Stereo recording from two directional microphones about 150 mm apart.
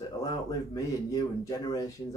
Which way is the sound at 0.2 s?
25° left (ahead or behind).